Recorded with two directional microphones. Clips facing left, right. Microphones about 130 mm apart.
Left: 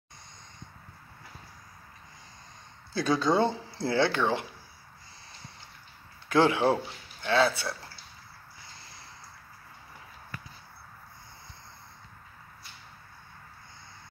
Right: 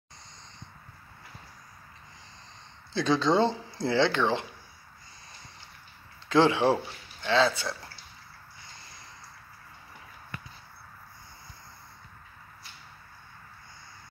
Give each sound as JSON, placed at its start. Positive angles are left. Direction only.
{"t": 2.9, "sound": "speech", "side_deg": -25}
{"t": 6.2, "sound": "speech", "side_deg": -20}